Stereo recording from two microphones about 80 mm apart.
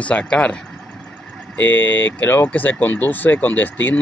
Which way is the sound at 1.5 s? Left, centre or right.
Left.